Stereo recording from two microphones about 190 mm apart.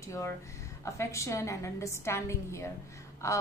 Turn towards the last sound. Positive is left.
turn(degrees=15)  # may be behind; listen again after turning